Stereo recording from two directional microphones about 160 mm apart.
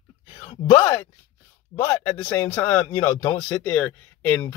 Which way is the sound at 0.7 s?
15° left (ahead or behind).